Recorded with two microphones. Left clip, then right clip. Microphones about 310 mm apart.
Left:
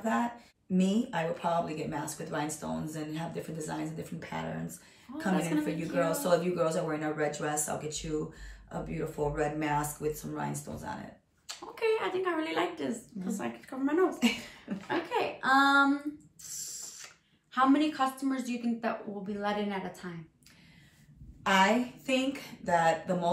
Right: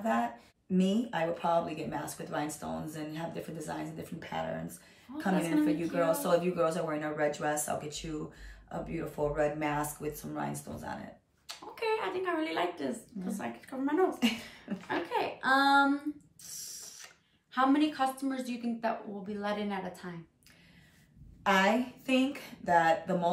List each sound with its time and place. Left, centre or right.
0.7 s speech: centre
11.4 s speech: centre
21.5 s speech: centre